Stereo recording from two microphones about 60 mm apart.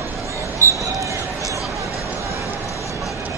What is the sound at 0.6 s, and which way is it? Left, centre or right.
Basketball bounce, right.